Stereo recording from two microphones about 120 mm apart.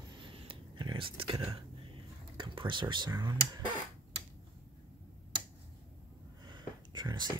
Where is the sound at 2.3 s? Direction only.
45° right (ahead or behind).